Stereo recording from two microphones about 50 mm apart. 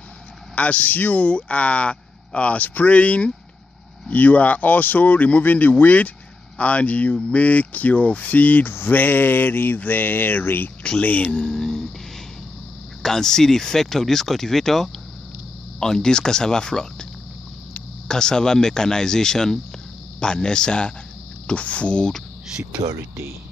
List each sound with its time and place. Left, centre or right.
0.6 s speech: left
4.1 s mantra: left
8.6 s mantra: left
11.0 s mantra: left
11.3 s a sound: centre
13.0 s speech: centre
22.9 s speech: right